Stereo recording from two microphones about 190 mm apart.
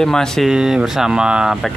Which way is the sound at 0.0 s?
5° left (ahead or behind).